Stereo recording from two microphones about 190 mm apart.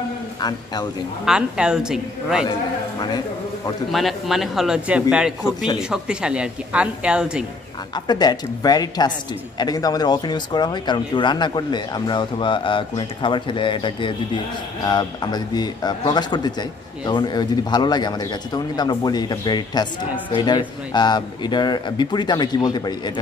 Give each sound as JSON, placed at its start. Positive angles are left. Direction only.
{"t": 0.4, "sound": "a man's voice", "side_deg": 20}
{"t": 1.2, "sound": "a woman's voice", "side_deg": -5}
{"t": 3.9, "sound": "a woman's voice", "side_deg": 0}
{"t": 7.9, "sound": "a man's voice", "side_deg": 20}